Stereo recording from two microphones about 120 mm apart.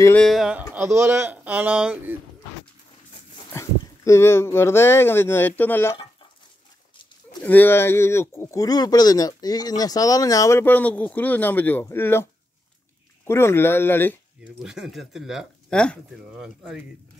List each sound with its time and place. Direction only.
0.3 s speech: 5° right (ahead or behind)
0.8 s speech: 20° right (ahead or behind)
3.5 s speech: 25° left (ahead or behind)
7.4 s speech: 15° left (ahead or behind)
13.3 s speech: 20° left (ahead or behind)
14.4 s speech: 5° right (ahead or behind)
16.3 s speech: 5° right (ahead or behind)